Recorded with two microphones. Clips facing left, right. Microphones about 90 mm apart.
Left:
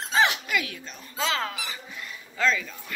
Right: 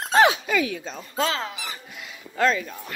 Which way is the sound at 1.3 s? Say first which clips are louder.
Even; 25° right (ahead or behind).